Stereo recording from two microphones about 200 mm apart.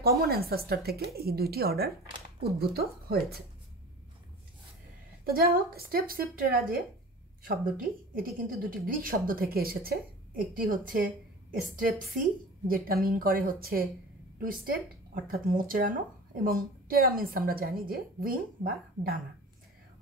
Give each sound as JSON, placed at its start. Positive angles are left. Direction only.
{"t": 0.3, "sound": "a woman's voice", "side_deg": -50}
{"t": 5.4, "sound": "a woman's voice", "side_deg": -50}